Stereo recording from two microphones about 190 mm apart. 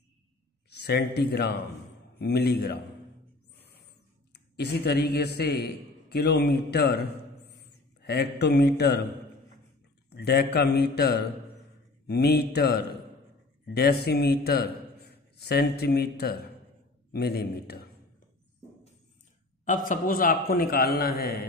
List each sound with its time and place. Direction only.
0.7 s a man's voice: 60° left (ahead or behind)
4.6 s a man's voice: 55° left (ahead or behind)
10.0 s a man's voice: 60° left (ahead or behind)
14.0 s a man's voice: 60° left (ahead or behind)
19.6 s a man's voice: 45° left (ahead or behind)